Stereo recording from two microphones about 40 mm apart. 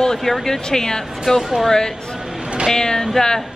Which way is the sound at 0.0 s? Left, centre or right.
Centre.